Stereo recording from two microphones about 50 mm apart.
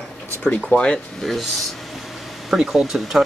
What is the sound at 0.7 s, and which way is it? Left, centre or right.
Speech, left.